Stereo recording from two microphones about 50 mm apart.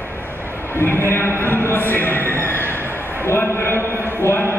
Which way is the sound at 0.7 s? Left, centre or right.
Left.